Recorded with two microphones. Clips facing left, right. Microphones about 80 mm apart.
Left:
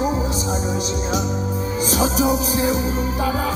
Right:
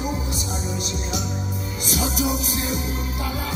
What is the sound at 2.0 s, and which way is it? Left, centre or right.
Music, left.